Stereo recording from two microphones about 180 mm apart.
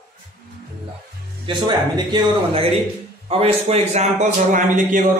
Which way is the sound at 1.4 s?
25° right (ahead or behind).